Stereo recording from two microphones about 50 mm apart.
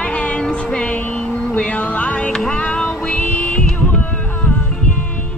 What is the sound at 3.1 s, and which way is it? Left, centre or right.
Music, left.